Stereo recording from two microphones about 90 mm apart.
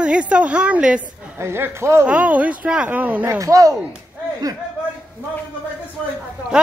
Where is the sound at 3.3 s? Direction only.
35° right (ahead or behind).